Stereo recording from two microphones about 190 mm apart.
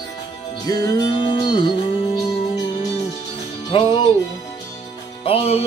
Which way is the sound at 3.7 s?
25° left (ahead or behind).